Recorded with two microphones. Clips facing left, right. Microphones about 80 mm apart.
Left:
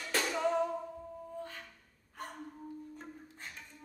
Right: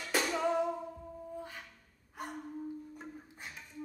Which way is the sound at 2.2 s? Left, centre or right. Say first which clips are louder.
Right 2 dB; centre.